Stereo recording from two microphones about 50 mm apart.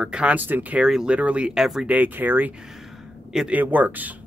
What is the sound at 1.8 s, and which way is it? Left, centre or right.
Speech, right.